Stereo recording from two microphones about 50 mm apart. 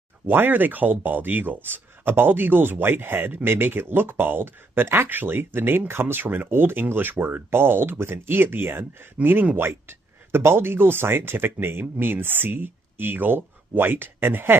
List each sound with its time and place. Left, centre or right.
0.3 s speech: right